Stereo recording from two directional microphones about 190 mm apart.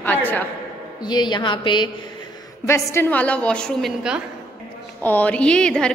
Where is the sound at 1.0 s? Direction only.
25° left (ahead or behind).